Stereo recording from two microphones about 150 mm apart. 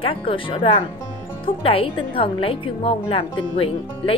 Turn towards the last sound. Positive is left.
turn(degrees=40)  # may be behind; listen again after turning